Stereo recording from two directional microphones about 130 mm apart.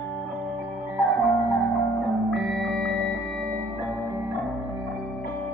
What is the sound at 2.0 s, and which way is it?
Music, centre (ahead or behind).